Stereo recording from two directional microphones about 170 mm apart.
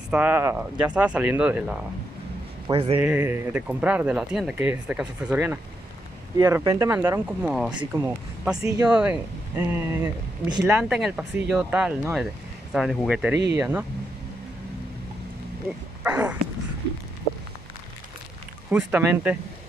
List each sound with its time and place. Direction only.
0.1 s speech: 10° right (ahead or behind)
2.7 s speech: 30° right (ahead or behind)
3.0 s speech: 10° right (ahead or behind)
8.8 s speech: 10° right (ahead or behind)
16.0 s a sound: 10° right (ahead or behind)
18.7 s speech: 10° right (ahead or behind)